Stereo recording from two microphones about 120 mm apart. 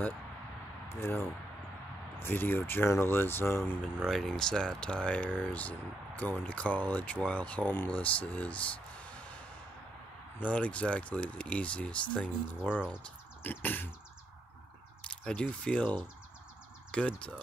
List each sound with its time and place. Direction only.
0.8 s speech: 20° left (ahead or behind)
4.1 s speech: 5° left (ahead or behind)
10.4 s speech: 10° left (ahead or behind)
15.0 s speech: 5° left (ahead or behind)